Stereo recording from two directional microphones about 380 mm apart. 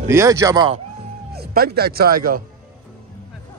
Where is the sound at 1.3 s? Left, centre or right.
Right.